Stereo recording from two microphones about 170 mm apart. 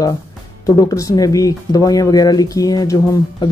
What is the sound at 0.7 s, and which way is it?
Speech, 20° left (ahead or behind).